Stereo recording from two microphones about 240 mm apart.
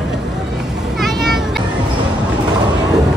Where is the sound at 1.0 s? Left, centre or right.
Centre.